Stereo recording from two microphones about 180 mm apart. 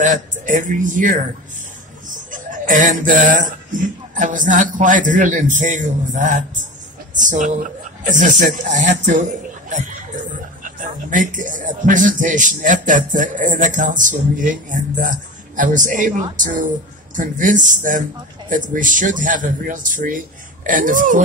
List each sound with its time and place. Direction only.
0.0 s a man's voice: 45° right (ahead or behind)